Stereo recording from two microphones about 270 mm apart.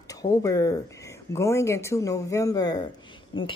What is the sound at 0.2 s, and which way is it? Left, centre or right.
Speech, centre.